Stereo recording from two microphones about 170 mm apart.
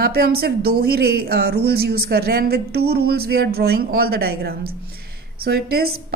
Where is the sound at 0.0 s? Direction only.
65° right (ahead or behind).